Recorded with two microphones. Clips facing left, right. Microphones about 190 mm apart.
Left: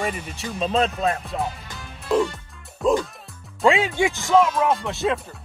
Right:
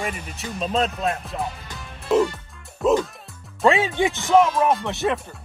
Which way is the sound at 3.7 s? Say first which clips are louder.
Even; 20° right (ahead or behind).